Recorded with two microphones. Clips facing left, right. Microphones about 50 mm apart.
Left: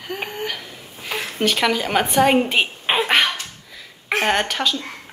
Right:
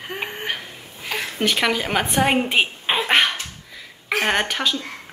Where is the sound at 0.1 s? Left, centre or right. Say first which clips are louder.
Left 1 dB; right.